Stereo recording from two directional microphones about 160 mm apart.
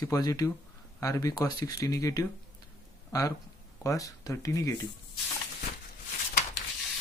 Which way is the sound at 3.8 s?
20° left (ahead or behind).